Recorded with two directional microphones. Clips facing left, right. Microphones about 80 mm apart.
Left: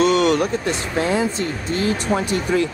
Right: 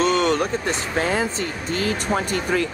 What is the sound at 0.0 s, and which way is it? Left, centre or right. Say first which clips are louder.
Speech: left 3 dB; right.